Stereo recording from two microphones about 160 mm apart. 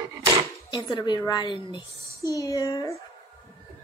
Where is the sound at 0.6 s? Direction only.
30° left (ahead or behind).